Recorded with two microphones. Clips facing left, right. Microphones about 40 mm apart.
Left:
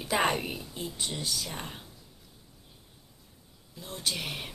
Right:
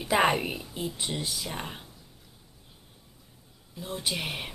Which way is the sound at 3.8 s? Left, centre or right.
Centre.